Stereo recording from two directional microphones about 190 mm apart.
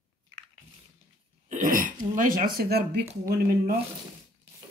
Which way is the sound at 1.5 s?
45° right (ahead or behind).